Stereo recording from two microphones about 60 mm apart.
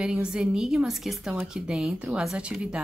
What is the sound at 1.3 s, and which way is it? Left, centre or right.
A woman's voice, centre.